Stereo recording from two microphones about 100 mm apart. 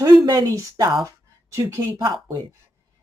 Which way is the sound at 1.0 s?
30° right (ahead or behind).